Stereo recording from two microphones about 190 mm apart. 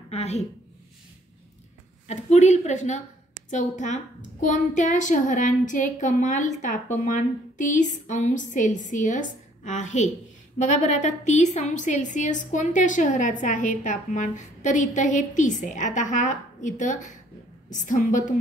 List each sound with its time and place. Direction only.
0.1 s a woman's voice: 35° left (ahead or behind)
2.0 s a woman's voice: 35° left (ahead or behind)